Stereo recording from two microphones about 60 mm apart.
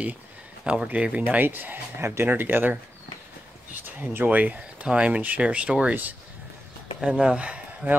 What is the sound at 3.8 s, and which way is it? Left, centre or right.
Speech, right.